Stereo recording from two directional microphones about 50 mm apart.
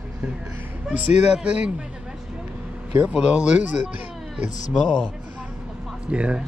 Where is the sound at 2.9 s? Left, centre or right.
Right.